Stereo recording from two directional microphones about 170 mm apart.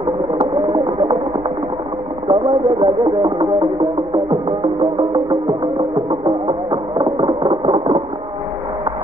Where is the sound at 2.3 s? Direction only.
30° right (ahead or behind).